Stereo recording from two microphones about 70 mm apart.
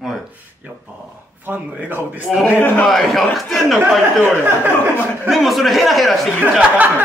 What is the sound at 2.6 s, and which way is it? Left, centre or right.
Speech, left.